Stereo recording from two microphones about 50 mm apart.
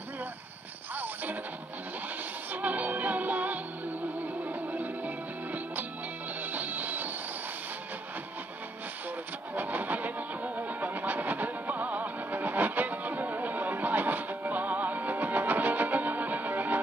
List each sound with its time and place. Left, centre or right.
0.9 s music: right
2.5 s music: right
9.6 s vehicle: right